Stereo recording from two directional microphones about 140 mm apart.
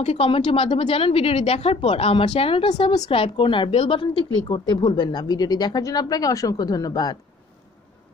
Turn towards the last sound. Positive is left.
turn(degrees=25)  # may be behind; listen again after turning